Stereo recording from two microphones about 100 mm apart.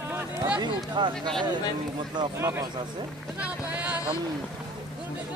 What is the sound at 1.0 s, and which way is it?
Speech, 50° right (ahead or behind).